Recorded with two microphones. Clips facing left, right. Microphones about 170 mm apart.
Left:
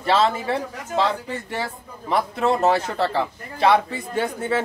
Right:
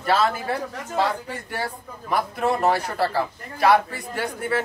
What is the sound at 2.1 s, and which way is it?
A man's voice, 25° left (ahead or behind).